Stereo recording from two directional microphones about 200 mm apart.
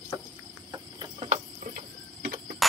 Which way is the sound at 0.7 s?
25° right (ahead or behind).